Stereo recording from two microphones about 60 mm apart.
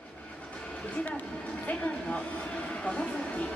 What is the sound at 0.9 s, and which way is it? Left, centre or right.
Speech, left.